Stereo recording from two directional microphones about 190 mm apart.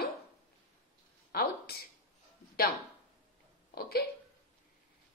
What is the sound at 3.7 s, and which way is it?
Speech, 55° left (ahead or behind).